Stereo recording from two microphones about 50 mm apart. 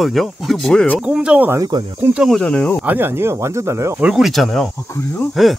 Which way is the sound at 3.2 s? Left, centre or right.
Right.